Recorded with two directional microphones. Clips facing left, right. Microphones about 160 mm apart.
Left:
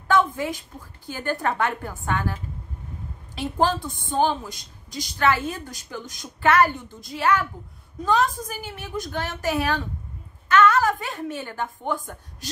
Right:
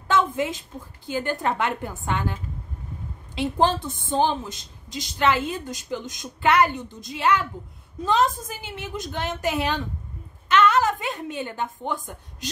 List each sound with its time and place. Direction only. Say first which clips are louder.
0.1 s a woman's voice: left 1 dB; 20° right (ahead or behind)
3.3 s a woman's voice: right 1 dB; 20° right (ahead or behind)